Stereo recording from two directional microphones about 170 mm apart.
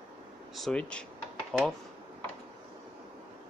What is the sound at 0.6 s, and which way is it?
Speech, 5° left (ahead or behind).